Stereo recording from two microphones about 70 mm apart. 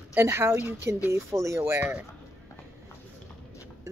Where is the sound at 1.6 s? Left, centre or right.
Right.